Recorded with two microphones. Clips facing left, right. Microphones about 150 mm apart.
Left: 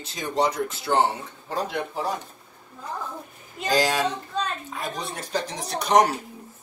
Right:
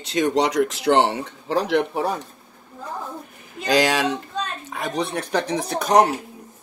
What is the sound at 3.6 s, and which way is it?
Speech, 85° right.